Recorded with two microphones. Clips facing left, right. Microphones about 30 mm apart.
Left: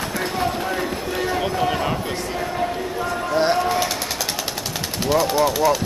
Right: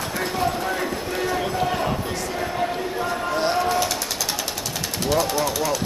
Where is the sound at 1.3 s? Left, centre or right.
Centre.